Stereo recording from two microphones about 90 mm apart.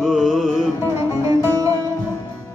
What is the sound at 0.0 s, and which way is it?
Music, 5° right (ahead or behind).